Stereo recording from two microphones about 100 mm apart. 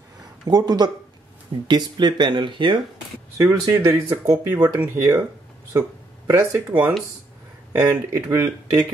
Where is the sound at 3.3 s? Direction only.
30° right (ahead or behind).